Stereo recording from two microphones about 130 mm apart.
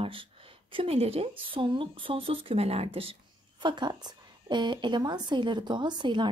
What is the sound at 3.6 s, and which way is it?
Speech, 35° right (ahead or behind).